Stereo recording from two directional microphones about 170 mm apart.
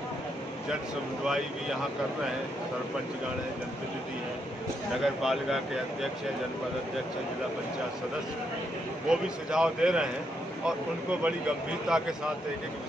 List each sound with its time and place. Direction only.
5.0 s speech: centre (ahead or behind)
9.1 s speech: 5° right (ahead or behind)